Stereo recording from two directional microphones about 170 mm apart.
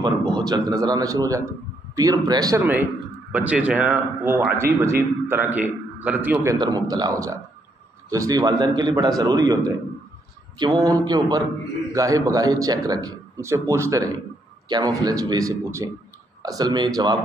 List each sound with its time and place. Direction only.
0.4 s a man's voice: 20° right (ahead or behind)
2.6 s a man's voice: 10° right (ahead or behind)